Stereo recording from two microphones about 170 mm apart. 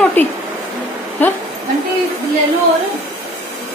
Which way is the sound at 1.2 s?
10° left (ahead or behind).